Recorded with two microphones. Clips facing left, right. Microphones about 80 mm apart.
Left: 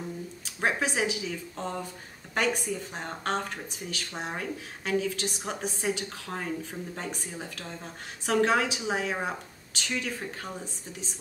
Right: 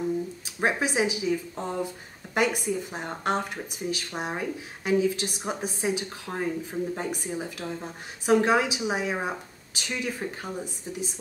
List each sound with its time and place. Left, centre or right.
0.6 s speech: centre